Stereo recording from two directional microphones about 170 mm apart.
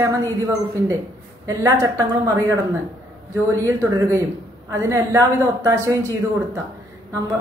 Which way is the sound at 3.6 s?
20° right (ahead or behind).